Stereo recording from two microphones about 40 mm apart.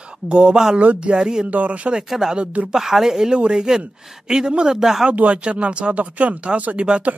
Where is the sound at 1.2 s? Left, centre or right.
Centre.